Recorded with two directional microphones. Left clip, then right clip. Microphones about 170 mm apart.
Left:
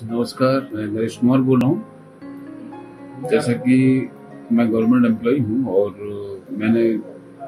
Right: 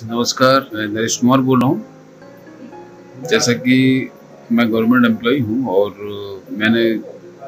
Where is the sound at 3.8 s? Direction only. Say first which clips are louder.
Right 2 dB; 10° left (ahead or behind).